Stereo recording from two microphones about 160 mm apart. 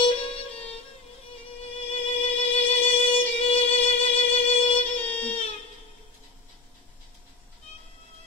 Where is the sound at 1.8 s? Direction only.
40° left (ahead or behind).